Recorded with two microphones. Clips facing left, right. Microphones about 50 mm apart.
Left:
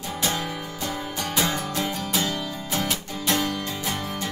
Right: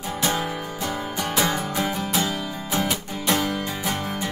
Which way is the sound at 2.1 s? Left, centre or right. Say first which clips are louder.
Right 1 dB; centre.